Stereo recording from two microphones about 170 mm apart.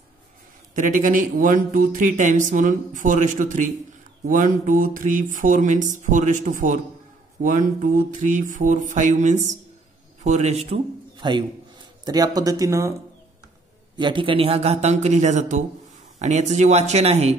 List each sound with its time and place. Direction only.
0.7 s a man's voice: 50° right (ahead or behind)
11.1 s a man's voice: 25° right (ahead or behind)
13.9 s a man's voice: 30° right (ahead or behind)